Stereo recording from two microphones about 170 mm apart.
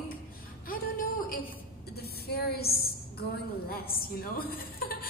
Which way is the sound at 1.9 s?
65° left (ahead or behind).